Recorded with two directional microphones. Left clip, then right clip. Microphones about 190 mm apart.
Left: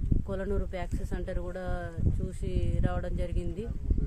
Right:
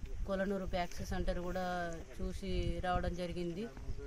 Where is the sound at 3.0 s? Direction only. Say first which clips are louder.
Left 3 dB; 35° left (ahead or behind).